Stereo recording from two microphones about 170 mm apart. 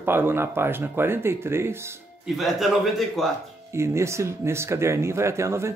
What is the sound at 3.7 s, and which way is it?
Speech, 15° right (ahead or behind).